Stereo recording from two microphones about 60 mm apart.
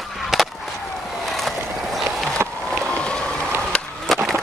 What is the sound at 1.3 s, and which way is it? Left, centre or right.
Vehicle, centre.